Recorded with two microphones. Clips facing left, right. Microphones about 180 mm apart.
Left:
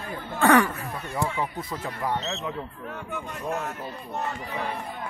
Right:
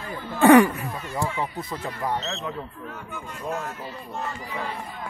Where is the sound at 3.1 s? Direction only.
65° left (ahead or behind).